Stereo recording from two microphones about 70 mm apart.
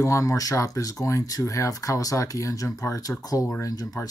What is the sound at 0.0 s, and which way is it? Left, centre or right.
Speech, left.